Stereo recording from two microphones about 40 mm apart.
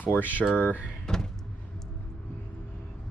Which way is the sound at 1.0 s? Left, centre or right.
Centre.